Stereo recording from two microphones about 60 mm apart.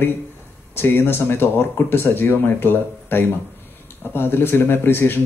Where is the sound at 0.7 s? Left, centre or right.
Left.